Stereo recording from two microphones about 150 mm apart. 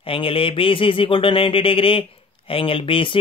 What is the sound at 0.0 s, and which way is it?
Speech, 35° left (ahead or behind).